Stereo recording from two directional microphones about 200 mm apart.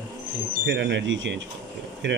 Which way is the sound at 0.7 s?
65° right (ahead or behind).